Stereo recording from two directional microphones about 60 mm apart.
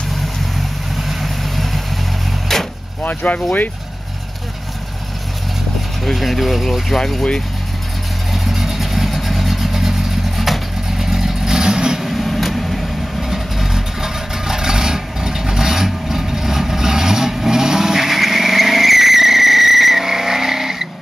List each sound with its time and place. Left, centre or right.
1.0 s vehicle: centre
3.0 s speech: left
6.0 s speech: centre
8.3 s vehicle: centre